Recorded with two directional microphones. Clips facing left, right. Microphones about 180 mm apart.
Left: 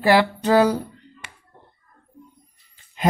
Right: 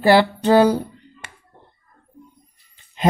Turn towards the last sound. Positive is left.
turn(degrees=-25)  # may be behind; listen again after turning